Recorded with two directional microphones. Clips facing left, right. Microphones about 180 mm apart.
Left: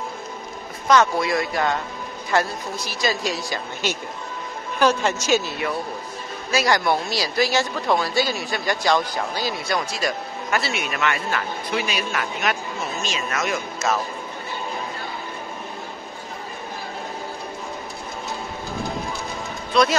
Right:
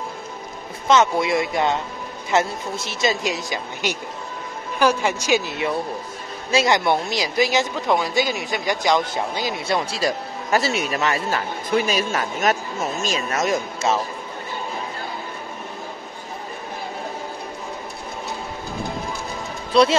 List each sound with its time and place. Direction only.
0.8 s speech: 20° right (ahead or behind); by 13.4 s 40° right (ahead or behind)
13.5 s speech: 30° right (ahead or behind)
19.7 s a man's voice: 30° right (ahead or behind)